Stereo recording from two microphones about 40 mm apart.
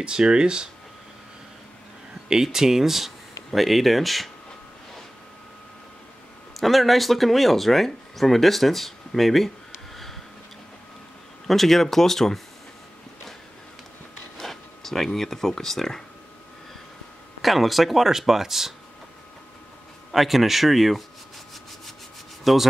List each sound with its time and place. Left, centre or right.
0.0 s speech: right
2.2 s speech: centre
6.6 s speech: centre
9.9 s a sound: centre
11.4 s speech: centre
14.4 s a sound: centre
15.1 s speech: centre
17.4 s speech: centre
20.1 s speech: centre
22.4 s rub: centre